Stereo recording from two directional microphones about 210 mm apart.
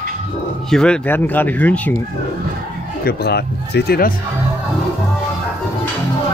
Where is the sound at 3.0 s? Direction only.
50° left (ahead or behind).